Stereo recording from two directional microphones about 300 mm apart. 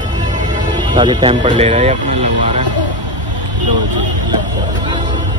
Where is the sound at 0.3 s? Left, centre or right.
Centre.